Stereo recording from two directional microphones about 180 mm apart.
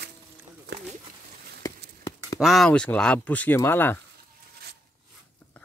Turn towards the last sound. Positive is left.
turn(degrees=10)  # may be behind; listen again after turning